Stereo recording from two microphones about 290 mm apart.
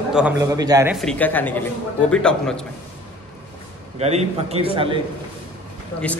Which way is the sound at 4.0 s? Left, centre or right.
Right.